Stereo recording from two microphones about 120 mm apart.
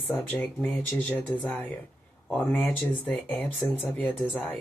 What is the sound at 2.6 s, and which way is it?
Speech, 15° left (ahead or behind).